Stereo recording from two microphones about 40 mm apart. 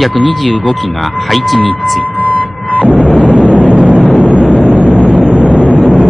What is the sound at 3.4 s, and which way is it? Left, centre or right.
Vehicle, right.